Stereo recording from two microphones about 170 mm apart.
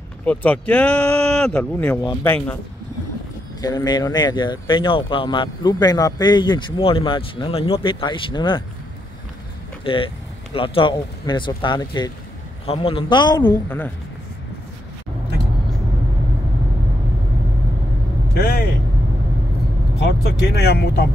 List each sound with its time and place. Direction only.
0.2 s a woman's voice: 10° left (ahead or behind)
3.6 s speech: 25° left (ahead or behind)
9.8 s a man's voice: 30° left (ahead or behind)
13.4 s a woman's voice: 10° left (ahead or behind)
18.3 s vehicle: 70° left (ahead or behind)
20.0 s vehicle: 75° left (ahead or behind)